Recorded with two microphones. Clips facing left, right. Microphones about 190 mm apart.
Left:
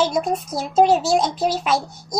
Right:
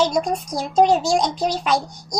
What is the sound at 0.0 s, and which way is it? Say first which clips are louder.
Speech: even; 5° left (ahead or behind).